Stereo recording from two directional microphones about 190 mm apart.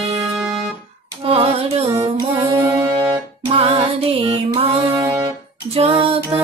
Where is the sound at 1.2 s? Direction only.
30° right (ahead or behind).